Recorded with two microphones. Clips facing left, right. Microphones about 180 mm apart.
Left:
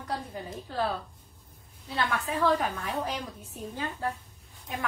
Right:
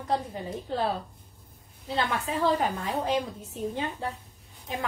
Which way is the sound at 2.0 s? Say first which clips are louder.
Right 1 dB; 25° right (ahead or behind).